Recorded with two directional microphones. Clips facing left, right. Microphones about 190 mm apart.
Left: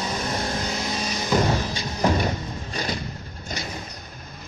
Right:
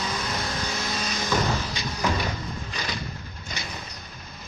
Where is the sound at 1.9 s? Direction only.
35° left (ahead or behind).